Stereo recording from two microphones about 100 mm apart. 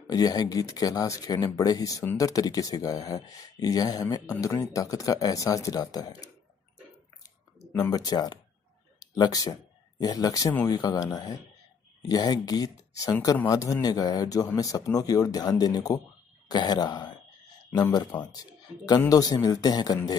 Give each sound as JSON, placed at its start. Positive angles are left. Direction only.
{"t": 0.0, "sound": "speech", "side_deg": 40}
{"t": 7.7, "sound": "a man's voice", "side_deg": 40}
{"t": 19.0, "sound": "speech", "side_deg": 35}